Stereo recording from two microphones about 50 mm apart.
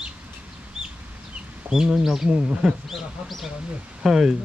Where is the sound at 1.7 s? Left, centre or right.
Centre.